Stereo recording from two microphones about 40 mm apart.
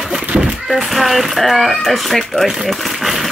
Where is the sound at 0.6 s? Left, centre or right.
Centre.